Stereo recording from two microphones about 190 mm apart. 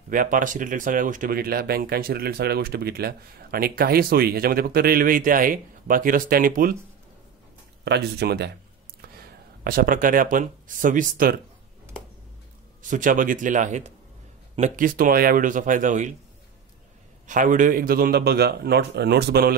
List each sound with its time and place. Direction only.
0.1 s speech: 45° right (ahead or behind)
7.8 s a man's voice: 60° right (ahead or behind)
9.7 s speech: 50° right (ahead or behind)
12.9 s speech: 45° right (ahead or behind)
17.3 s a man's voice: 45° right (ahead or behind)